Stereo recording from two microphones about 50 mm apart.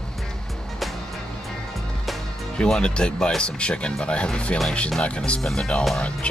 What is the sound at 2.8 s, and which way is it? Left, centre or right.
Speech, centre.